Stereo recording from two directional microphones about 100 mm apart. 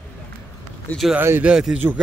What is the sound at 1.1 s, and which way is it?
Speech, 25° right (ahead or behind).